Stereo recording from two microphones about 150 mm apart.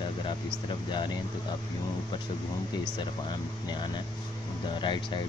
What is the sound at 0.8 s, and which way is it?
Speech, 30° left (ahead or behind).